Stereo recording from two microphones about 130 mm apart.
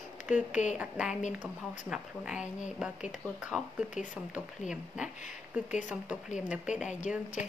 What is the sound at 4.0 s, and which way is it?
Speech, 75° left (ahead or behind).